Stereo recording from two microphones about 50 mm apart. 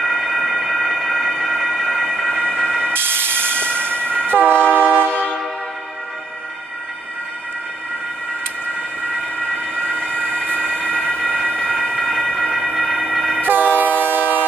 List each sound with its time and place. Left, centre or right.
0.0 s train: centre
2.9 s train: right
4.6 s train: left
9.5 s emergency vehicle: left
10.1 s train: left
10.9 s emergency vehicle: left
13.4 s train: right